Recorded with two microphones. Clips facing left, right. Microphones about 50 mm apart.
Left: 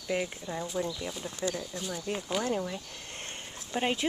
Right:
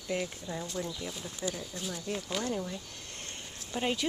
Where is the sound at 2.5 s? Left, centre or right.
Left.